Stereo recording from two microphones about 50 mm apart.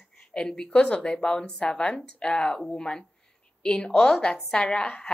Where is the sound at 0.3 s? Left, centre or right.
Centre.